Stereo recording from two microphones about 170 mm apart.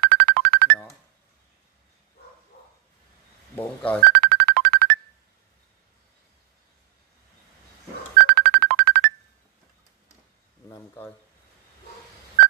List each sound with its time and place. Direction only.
0.0 s music: 70° right (ahead or behind)
3.5 s speech: 10° left (ahead or behind)
4.1 s music: 70° right (ahead or behind)
8.2 s music: 70° right (ahead or behind)